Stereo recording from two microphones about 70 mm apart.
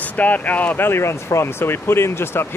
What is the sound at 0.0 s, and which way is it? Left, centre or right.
Speech, left.